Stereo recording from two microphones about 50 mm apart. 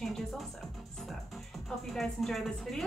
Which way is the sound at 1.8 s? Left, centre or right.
Centre.